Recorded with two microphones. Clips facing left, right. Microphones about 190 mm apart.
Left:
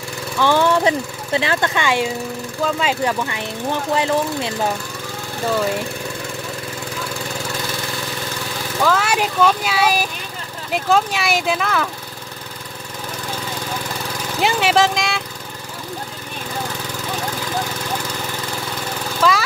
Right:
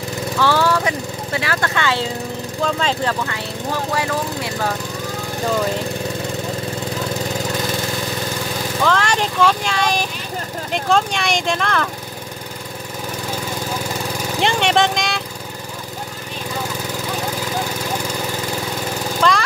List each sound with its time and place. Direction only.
0.4 s speech: 20° left (ahead or behind)
8.8 s speech: 5° left (ahead or behind)
14.4 s speech: 5° left (ahead or behind)
19.2 s lawn mower: 5° left (ahead or behind)